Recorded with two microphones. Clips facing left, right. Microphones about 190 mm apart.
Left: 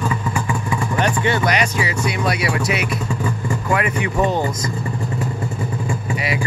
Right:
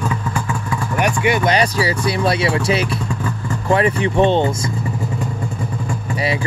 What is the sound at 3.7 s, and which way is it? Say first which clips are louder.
Speech: right 6 dB; 30° right (ahead or behind).